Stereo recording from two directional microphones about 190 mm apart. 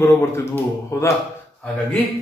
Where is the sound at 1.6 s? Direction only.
5° left (ahead or behind).